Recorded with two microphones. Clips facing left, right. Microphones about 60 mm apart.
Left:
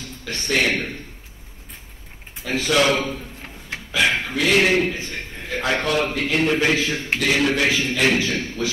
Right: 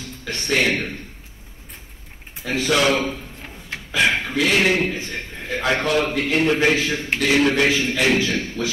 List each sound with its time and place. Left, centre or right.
0.0 s a man's voice: right
2.4 s a man's voice: right
4.2 s a sound: right
4.5 s a man's voice: left
4.7 s a man's voice: right